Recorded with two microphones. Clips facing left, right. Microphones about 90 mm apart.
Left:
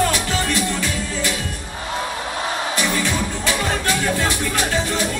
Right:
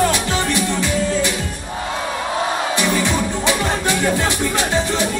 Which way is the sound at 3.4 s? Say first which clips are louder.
Right 1 dB; 20° right (ahead or behind).